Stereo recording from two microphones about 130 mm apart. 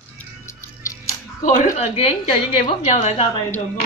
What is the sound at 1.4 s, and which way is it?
A woman's voice, 60° left (ahead or behind).